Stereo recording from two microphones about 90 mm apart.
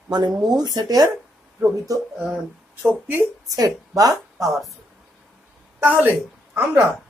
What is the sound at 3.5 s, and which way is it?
Speech, 40° right (ahead or behind).